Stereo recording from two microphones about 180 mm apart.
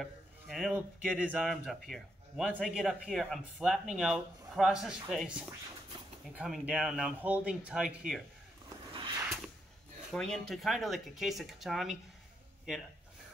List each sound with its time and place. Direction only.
0.0 s speech: centre (ahead or behind)
8.9 s a sound: 25° right (ahead or behind)
10.1 s speech: 5° left (ahead or behind)